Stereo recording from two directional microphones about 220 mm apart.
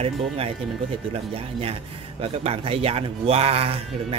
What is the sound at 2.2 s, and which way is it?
Speech, 25° right (ahead or behind).